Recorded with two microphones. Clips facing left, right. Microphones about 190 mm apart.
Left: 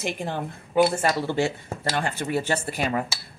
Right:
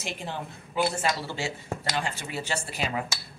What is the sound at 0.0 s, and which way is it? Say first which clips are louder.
Speech: left 6 dB; 55° left (ahead or behind).